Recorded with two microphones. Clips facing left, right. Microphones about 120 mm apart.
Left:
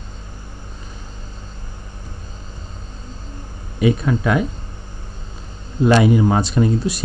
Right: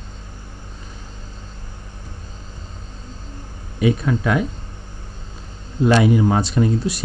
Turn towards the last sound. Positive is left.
turn(degrees=10)  # may be behind; listen again after turning